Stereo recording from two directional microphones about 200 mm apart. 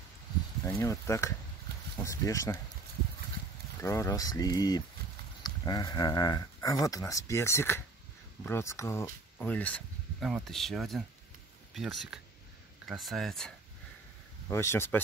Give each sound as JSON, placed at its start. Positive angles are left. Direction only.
{"t": 0.7, "sound": "speech", "side_deg": 15}
{"t": 3.8, "sound": "speech", "side_deg": 15}
{"t": 14.5, "sound": "speech", "side_deg": 15}